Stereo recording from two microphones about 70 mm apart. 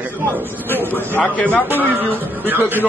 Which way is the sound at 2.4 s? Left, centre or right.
Right.